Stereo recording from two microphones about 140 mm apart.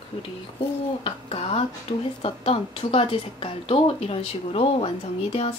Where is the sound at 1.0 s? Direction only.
45° left (ahead or behind).